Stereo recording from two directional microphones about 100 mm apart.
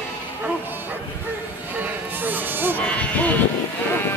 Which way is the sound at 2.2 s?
20° right (ahead or behind).